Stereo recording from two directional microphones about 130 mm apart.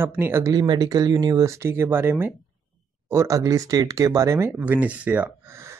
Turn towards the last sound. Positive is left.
turn(degrees=-10)  # may be behind; listen again after turning